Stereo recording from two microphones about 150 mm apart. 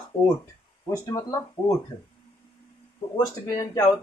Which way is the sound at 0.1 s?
35° left (ahead or behind).